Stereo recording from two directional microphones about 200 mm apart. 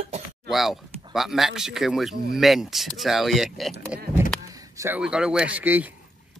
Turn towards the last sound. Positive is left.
turn(degrees=-10)  # may be behind; listen again after turning